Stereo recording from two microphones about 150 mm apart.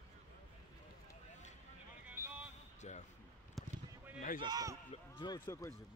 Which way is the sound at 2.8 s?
45° left (ahead or behind).